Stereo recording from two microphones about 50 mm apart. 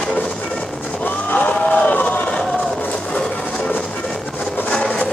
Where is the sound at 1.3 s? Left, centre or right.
Left.